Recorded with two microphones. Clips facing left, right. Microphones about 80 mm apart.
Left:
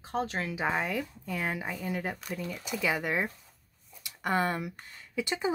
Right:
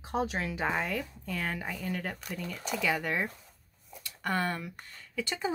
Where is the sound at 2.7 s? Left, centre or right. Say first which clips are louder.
Even; centre.